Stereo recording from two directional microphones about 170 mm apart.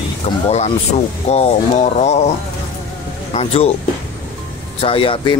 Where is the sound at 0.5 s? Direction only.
40° left (ahead or behind).